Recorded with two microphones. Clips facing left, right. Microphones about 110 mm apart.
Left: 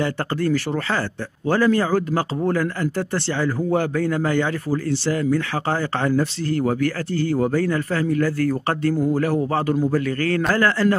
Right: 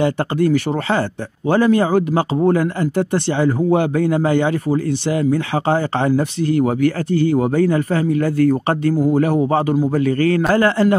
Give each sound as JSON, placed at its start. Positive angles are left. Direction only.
{"t": 0.0, "sound": "speech", "side_deg": -20}